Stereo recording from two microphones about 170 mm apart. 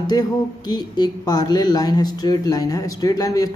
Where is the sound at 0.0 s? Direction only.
25° left (ahead or behind).